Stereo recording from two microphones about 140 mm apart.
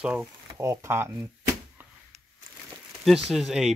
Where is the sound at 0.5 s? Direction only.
20° right (ahead or behind).